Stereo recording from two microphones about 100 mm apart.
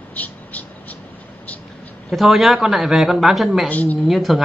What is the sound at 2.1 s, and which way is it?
Speech, centre (ahead or behind).